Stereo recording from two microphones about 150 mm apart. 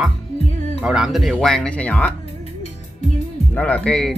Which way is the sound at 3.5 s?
10° left (ahead or behind).